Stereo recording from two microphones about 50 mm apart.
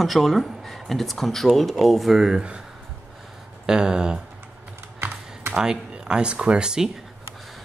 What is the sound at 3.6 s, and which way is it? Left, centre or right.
Speech, centre.